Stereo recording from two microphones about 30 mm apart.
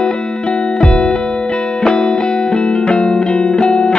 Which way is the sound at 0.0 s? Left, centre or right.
Left.